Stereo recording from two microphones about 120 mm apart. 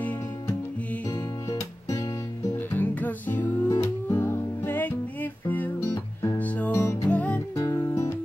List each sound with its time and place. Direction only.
1.1 s music: 30° left (ahead or behind)
2.5 s music: 15° left (ahead or behind)
3.6 s music: 25° left (ahead or behind); by 7.4 s 10° left (ahead or behind)
7.5 s music: 30° left (ahead or behind)